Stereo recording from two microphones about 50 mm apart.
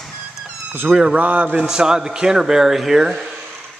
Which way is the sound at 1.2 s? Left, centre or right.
Right.